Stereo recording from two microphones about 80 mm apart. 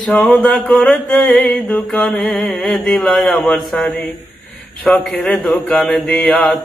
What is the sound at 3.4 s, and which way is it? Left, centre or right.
A man's voice, centre.